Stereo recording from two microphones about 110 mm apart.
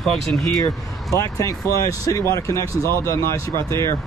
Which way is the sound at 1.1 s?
30° left (ahead or behind).